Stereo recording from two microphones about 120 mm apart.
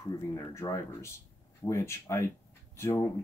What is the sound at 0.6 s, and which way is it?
Speech, 25° left (ahead or behind).